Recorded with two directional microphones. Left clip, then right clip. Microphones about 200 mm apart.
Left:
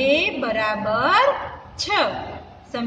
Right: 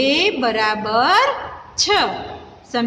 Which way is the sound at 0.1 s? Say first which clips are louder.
Right 3 dB; 50° right (ahead or behind).